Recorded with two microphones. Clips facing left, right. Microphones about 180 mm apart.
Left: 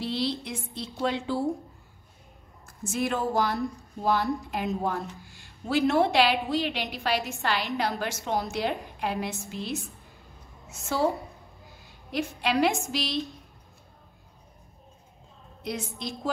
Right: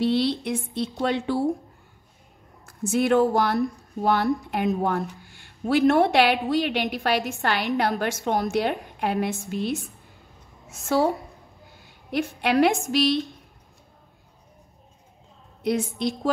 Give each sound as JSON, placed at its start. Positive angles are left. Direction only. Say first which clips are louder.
{"t": 0.0, "sound": "speech", "louder": "right 7 dB", "side_deg": -60}
{"t": 2.6, "sound": "speech", "louder": "right 6 dB", "side_deg": -60}
{"t": 10.8, "sound": "speech", "louder": "right 5 dB", "side_deg": -55}
{"t": 12.1, "sound": "speech", "louder": "right 4 dB", "side_deg": -60}
{"t": 15.6, "sound": "speech", "louder": "right 9 dB", "side_deg": -60}